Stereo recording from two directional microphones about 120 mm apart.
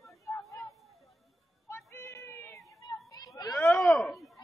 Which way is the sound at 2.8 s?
30° left (ahead or behind).